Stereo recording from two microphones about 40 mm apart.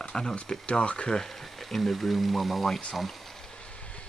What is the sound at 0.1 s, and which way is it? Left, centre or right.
Speech, centre.